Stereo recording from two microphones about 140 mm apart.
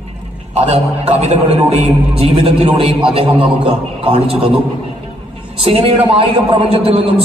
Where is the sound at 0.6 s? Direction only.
50° right (ahead or behind).